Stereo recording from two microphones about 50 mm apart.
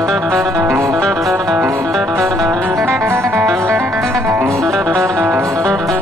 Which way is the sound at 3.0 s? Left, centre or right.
Right.